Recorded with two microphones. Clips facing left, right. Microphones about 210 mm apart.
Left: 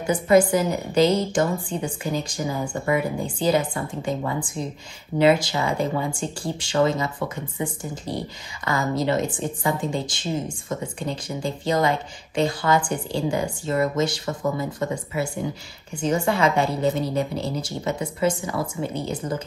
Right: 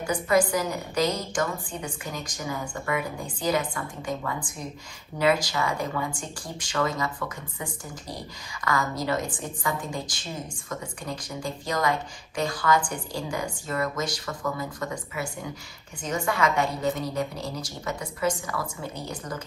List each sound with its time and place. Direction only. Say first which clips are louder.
0.0 s a woman's voice: left 6 dB; 25° left (ahead or behind)